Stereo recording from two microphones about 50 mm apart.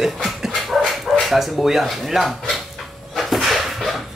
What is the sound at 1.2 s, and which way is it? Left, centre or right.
Speech, centre.